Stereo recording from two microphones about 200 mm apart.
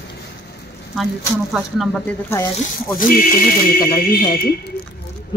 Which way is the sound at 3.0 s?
45° left (ahead or behind).